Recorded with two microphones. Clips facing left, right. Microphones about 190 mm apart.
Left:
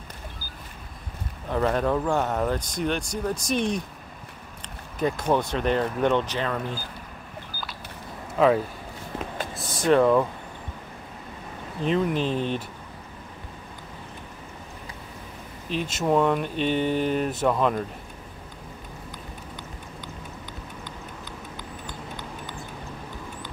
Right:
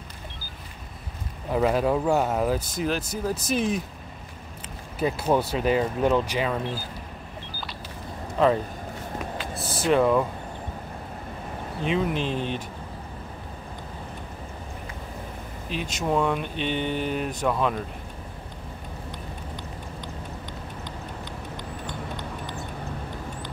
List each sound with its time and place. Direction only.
1.5 s speech: 5° right (ahead or behind)
4.9 s speech: 5° right (ahead or behind)
8.4 s speech: 5° left (ahead or behind)
9.8 s speech: centre (ahead or behind)
12.1 s speech: 40° left (ahead or behind)
15.7 s speech: centre (ahead or behind)